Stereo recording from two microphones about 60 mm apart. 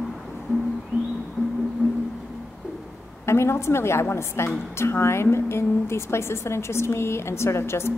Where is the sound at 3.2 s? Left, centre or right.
Left.